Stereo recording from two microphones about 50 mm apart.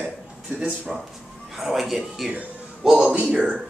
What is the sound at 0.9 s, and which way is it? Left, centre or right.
A man's voice, centre.